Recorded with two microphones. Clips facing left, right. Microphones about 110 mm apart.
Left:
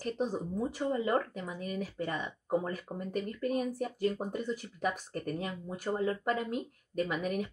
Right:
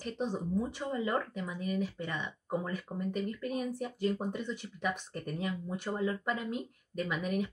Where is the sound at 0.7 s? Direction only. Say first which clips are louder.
Left 3 dB; 40° left (ahead or behind).